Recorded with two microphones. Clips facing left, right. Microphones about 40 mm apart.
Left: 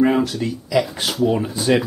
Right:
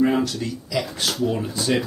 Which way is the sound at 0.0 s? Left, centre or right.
Centre.